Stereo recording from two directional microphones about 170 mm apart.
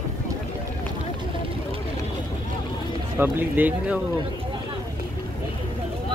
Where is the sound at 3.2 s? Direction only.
10° right (ahead or behind).